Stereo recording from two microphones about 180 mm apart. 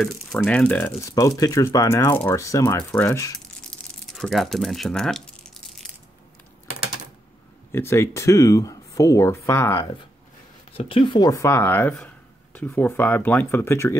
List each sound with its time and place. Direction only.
0.0 s speech: 5° left (ahead or behind)
4.0 s a sound: centre (ahead or behind)
7.7 s speech: 15° left (ahead or behind)
10.8 s speech: 30° left (ahead or behind); by 13.9 s 15° left (ahead or behind)